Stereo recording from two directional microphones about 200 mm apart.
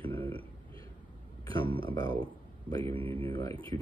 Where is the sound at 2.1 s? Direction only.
25° right (ahead or behind).